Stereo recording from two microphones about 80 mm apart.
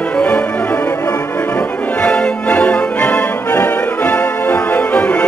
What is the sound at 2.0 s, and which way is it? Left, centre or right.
Music, centre.